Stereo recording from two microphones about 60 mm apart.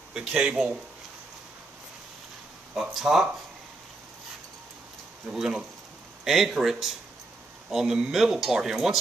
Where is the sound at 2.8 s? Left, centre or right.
Centre.